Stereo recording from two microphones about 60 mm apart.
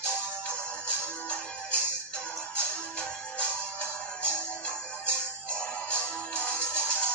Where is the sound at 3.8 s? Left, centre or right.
Centre.